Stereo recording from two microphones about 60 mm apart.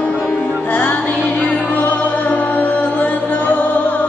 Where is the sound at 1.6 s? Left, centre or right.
Left.